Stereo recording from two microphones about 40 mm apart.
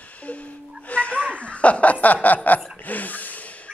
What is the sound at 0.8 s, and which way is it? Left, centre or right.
Laughter, left.